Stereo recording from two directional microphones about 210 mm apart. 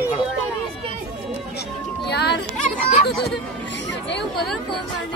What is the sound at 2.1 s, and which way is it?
Music, 55° left (ahead or behind).